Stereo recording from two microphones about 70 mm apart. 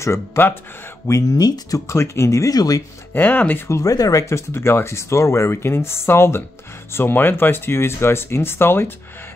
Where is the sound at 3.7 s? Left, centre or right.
Left.